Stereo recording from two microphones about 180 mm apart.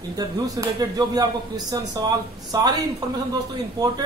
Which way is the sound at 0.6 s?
20° right (ahead or behind).